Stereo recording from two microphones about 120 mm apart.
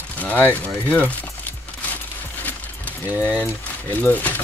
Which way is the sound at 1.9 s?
15° left (ahead or behind).